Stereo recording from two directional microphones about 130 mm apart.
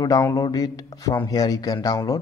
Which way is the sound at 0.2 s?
30° left (ahead or behind).